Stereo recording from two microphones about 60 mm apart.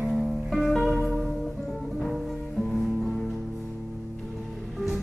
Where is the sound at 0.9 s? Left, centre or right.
Centre.